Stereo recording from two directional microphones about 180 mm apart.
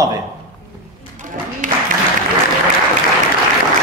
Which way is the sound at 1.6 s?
45° right (ahead or behind).